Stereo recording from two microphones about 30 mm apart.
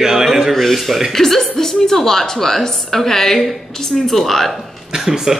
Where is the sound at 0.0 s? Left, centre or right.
Centre.